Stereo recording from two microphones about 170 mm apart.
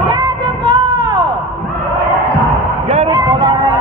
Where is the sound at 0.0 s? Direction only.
25° right (ahead or behind).